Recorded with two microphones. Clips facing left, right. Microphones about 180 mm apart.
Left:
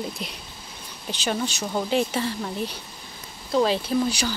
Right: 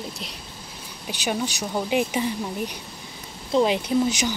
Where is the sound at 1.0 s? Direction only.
10° right (ahead or behind).